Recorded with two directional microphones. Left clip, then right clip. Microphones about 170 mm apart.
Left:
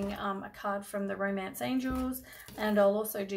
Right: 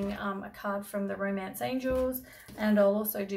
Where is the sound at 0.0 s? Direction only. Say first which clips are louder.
Even; 20° left (ahead or behind).